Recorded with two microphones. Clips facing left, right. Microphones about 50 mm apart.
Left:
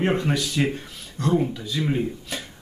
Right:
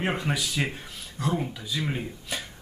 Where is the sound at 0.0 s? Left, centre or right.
Centre.